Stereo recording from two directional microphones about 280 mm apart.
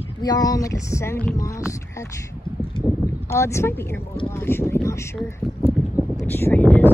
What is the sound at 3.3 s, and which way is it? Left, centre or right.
Speech, centre.